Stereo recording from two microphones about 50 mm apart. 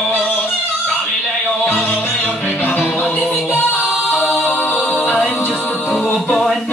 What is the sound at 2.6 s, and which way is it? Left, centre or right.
Music, left.